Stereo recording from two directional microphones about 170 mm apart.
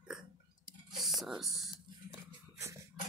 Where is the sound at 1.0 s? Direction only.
Centre (ahead or behind).